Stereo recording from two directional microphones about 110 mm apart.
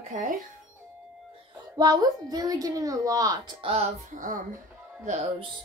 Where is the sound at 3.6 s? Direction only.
65° right (ahead or behind).